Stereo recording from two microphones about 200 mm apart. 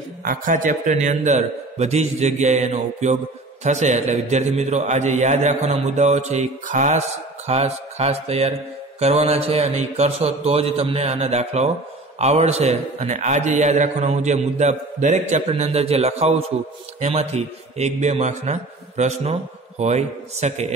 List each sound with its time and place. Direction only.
0.2 s a man's voice: 40° right (ahead or behind)